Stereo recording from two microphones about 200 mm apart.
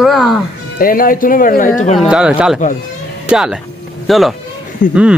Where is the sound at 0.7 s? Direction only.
45° left (ahead or behind).